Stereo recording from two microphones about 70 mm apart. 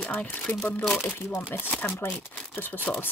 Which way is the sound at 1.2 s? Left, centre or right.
Left.